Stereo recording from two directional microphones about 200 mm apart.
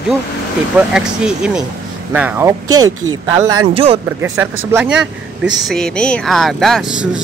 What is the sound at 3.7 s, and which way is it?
Speech, 30° right (ahead or behind).